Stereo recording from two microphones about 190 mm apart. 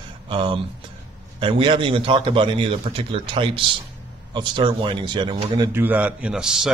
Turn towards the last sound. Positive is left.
turn(degrees=-5)  # may be behind; listen again after turning